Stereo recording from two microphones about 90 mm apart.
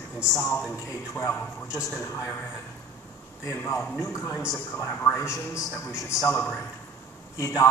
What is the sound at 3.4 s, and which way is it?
A man's voice, 40° left (ahead or behind).